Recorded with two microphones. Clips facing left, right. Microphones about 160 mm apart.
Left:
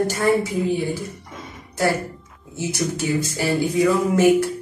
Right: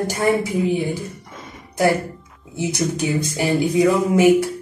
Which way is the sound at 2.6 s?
15° right (ahead or behind).